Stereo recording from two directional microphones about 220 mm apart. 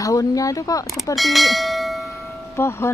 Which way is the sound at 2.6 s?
10° left (ahead or behind).